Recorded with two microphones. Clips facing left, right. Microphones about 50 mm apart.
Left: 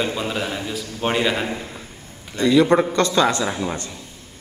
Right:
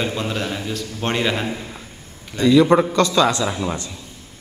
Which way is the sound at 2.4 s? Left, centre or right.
Left.